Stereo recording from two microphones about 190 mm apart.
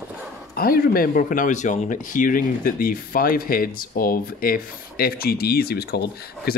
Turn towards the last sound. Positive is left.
turn(degrees=55)  # may be behind; listen again after turning